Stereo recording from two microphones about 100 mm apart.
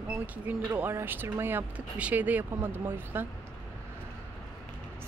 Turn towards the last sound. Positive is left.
turn(degrees=-20)  # may be behind; listen again after turning